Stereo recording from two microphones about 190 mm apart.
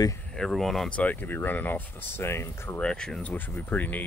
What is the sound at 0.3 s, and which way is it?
Speech, centre (ahead or behind).